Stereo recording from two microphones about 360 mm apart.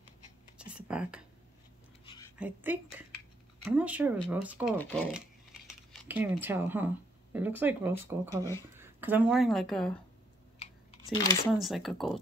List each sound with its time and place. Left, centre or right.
0.6 s whispering: centre
2.3 s a woman's voice: centre
10.6 s typing: centre
11.5 s a woman's voice: centre